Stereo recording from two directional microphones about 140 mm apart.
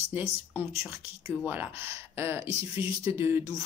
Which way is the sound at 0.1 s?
15° right (ahead or behind).